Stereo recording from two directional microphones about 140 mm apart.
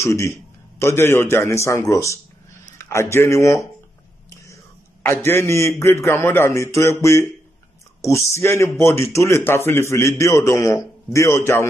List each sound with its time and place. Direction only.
0.0 s a man's voice: 20° left (ahead or behind)
5.0 s a man's voice: 15° left (ahead or behind)